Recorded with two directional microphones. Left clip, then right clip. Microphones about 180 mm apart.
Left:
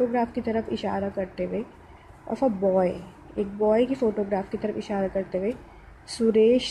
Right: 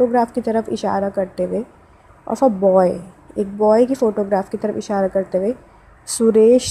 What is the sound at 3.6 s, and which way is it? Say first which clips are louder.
Speech: right 8 dB; 5° right (ahead or behind).